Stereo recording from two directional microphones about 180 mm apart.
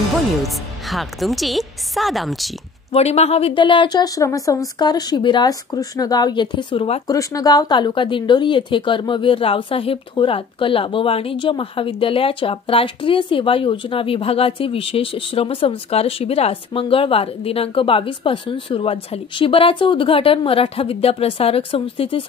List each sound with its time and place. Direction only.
0.4 s a woman's voice: centre (ahead or behind)
2.9 s speech: 35° left (ahead or behind)